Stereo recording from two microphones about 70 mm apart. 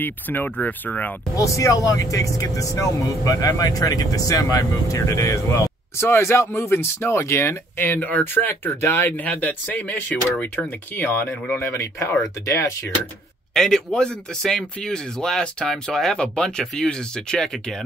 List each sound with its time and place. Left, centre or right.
0.0 s speech: left
1.3 s speech: left
11.7 s speech: left
13.5 s speech: centre